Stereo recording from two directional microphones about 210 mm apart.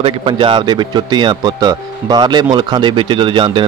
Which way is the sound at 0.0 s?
25° right (ahead or behind).